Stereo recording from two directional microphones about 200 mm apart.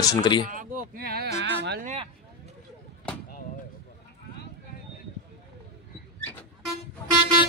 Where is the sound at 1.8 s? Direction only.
35° right (ahead or behind).